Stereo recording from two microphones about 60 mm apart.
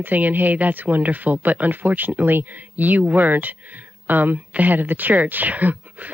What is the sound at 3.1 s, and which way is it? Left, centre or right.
Speech, right.